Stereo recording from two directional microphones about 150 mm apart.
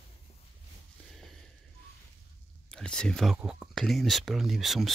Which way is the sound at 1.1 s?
Centre (ahead or behind).